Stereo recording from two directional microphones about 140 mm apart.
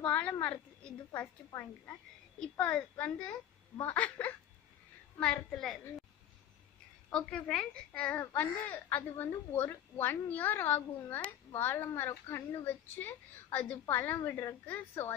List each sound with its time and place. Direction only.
0.0 s a woman's voice: 10° left (ahead or behind)
7.1 s a woman's voice: 5° left (ahead or behind)